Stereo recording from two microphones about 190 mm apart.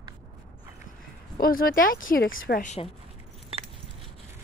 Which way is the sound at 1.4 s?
50° left (ahead or behind).